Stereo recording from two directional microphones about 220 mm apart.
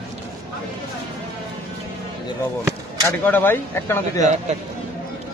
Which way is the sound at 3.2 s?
10° left (ahead or behind).